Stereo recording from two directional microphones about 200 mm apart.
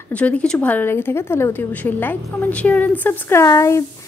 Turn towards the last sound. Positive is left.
turn(degrees=15)  # may be behind; listen again after turning